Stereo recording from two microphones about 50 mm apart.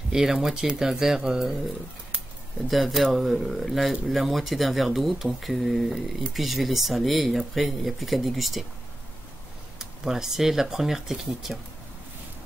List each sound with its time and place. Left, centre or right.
0.1 s speech: centre
2.7 s speech: centre
9.8 s speech: centre